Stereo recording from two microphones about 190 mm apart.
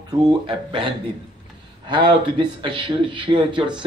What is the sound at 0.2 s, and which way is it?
Speech, 25° right (ahead or behind).